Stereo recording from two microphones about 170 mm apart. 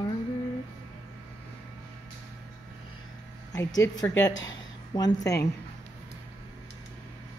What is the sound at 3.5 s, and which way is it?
Speech, 20° left (ahead or behind).